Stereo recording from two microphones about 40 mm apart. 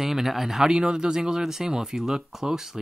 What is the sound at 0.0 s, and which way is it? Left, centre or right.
Speech, centre.